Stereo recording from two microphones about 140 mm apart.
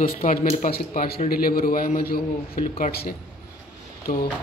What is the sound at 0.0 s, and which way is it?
A man's voice, 75° left (ahead or behind).